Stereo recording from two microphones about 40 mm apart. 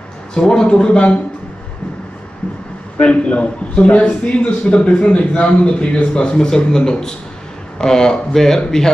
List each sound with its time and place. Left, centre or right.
0.3 s a man's voice: centre
3.0 s a man's voice: left; by 8.9 s centre